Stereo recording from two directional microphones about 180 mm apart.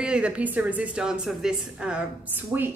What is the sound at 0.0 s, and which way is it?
A woman's voice, 5° right (ahead or behind).